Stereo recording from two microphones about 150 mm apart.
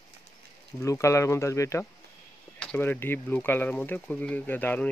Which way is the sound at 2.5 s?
10° left (ahead or behind).